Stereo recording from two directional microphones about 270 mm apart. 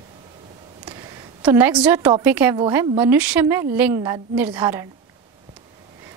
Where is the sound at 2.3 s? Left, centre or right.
Centre.